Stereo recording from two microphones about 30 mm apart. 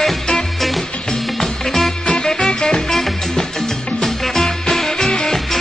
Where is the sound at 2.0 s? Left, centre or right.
Left.